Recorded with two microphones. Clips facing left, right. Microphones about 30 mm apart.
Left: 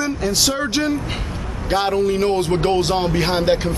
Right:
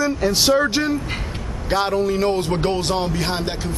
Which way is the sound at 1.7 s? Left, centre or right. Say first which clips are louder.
Left 1 dB; centre.